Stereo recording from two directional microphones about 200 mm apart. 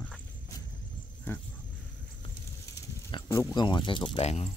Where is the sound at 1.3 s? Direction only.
10° left (ahead or behind).